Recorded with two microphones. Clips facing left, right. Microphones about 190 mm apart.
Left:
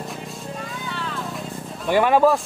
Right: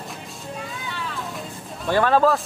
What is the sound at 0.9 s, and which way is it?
Music, centre (ahead or behind).